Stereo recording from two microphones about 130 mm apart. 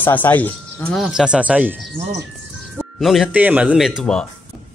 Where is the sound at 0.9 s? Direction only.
Centre (ahead or behind).